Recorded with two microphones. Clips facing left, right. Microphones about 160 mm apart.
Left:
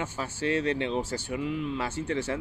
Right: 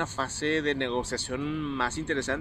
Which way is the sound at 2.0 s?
75° right (ahead or behind).